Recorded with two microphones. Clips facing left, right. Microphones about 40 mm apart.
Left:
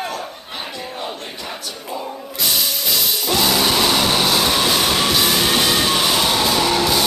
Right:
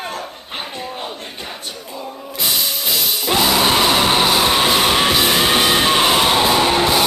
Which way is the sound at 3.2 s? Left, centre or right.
Right.